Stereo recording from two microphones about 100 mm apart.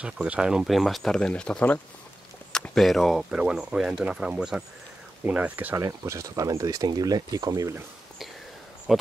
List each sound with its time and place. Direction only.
0.0 s speech: 10° right (ahead or behind)
5.8 s speech: 30° right (ahead or behind)
8.9 s speech: centre (ahead or behind)